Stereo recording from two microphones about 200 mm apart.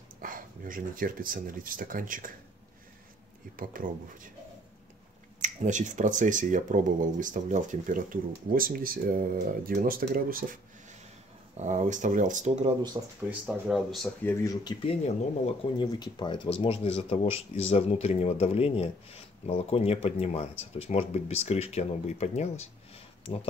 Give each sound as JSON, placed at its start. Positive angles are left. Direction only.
{"t": 0.2, "sound": "speech", "side_deg": -45}
{"t": 3.5, "sound": "speech", "side_deg": -45}
{"t": 5.4, "sound": "speech", "side_deg": -35}
{"t": 13.0, "sound": "speech", "side_deg": -20}
{"t": 13.3, "sound": "speech", "side_deg": -5}